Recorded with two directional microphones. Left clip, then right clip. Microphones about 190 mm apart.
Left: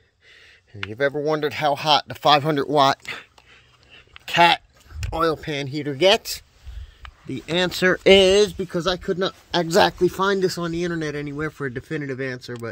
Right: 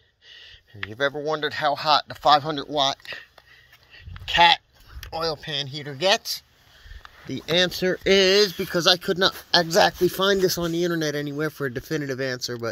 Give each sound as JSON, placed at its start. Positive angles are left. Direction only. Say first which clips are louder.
{"t": 0.3, "sound": "a sound", "louder": "right 3 dB", "side_deg": 30}
{"t": 1.2, "sound": "speech", "louder": "left 2 dB", "side_deg": 45}
{"t": 4.3, "sound": "sheep", "louder": "left 1 dB", "side_deg": 40}
{"t": 5.1, "sound": "speech", "louder": "left 5 dB", "side_deg": 45}
{"t": 7.4, "sound": "speech", "louder": "right 1 dB", "side_deg": 20}
{"t": 7.7, "sound": "speech", "louder": "left 6 dB", "side_deg": 40}
{"t": 8.3, "sound": "speech", "louder": "left 2 dB", "side_deg": 15}
{"t": 8.5, "sound": "speech", "louder": "right 4 dB", "side_deg": -5}
{"t": 9.7, "sound": "speech", "louder": "left 4 dB", "side_deg": 30}
{"t": 10.0, "sound": "speech", "louder": "even", "side_deg": 5}